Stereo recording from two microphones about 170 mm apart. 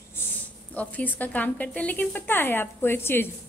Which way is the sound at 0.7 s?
10° left (ahead or behind).